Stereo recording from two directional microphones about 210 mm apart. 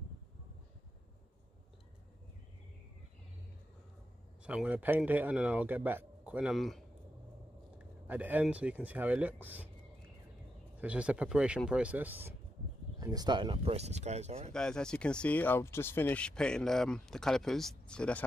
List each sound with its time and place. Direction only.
4.5 s speech: 5° right (ahead or behind)
8.1 s speech: 10° right (ahead or behind)
10.8 s speech: 5° right (ahead or behind); by 14.5 s 30° right (ahead or behind)
14.5 s speech: 5° left (ahead or behind)